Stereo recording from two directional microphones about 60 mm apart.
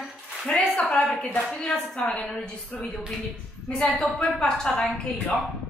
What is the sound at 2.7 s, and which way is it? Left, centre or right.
A woman's voice, centre.